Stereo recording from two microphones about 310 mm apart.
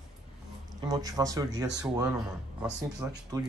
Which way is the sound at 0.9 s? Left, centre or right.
Centre.